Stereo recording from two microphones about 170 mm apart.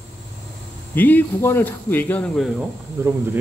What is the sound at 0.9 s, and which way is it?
Speech, 10° left (ahead or behind).